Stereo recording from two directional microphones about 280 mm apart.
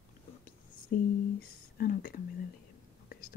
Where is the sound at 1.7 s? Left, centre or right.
Left.